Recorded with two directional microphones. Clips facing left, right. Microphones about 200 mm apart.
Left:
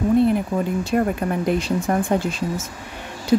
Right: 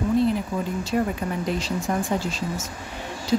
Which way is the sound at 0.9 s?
55° left (ahead or behind).